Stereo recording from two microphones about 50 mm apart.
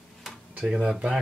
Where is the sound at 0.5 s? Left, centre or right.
Centre.